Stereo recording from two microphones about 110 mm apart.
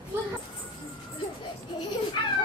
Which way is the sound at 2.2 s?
45° left (ahead or behind).